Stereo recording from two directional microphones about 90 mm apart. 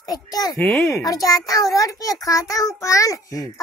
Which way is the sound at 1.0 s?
45° left (ahead or behind).